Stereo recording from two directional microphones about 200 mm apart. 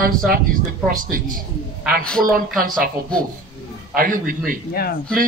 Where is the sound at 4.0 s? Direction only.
45° right (ahead or behind).